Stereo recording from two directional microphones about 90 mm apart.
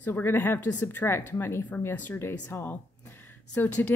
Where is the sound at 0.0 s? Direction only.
25° left (ahead or behind).